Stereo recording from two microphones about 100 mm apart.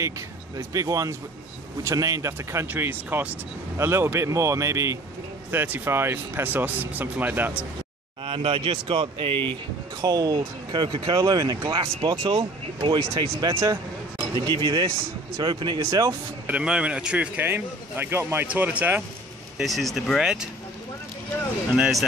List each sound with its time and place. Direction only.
0.6 s speech: 35° right (ahead or behind); by 7.5 s 20° right (ahead or behind)
8.3 s speech: 65° right (ahead or behind)
10.0 s speech: 40° right (ahead or behind)
14.3 s speech: 50° right (ahead or behind)
15.9 s speech: 30° right (ahead or behind)
16.4 s a man's voice: 10° right (ahead or behind)
19.6 s speech: centre (ahead or behind)
21.7 s a man's voice: 10° right (ahead or behind)